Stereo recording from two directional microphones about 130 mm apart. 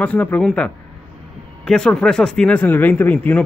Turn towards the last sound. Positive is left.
turn(degrees=15)  # may be behind; listen again after turning